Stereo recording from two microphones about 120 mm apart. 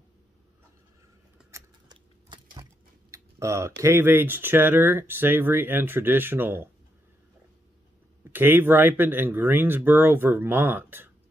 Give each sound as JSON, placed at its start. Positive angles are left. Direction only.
{"t": 1.9, "sound": "a sound", "side_deg": -40}
{"t": 3.1, "sound": "speech", "side_deg": -25}
{"t": 8.2, "sound": "speech", "side_deg": -15}